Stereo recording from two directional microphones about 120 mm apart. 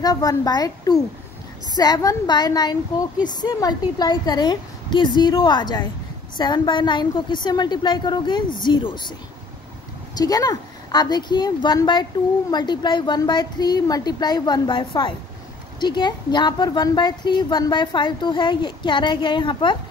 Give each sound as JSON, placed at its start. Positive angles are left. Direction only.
{"t": 0.0, "sound": "a woman's voice", "side_deg": 30}
{"t": 10.1, "sound": "a woman's voice", "side_deg": 30}